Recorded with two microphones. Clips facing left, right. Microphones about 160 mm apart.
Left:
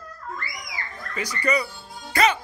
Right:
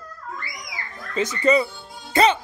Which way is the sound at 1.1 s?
25° right (ahead or behind).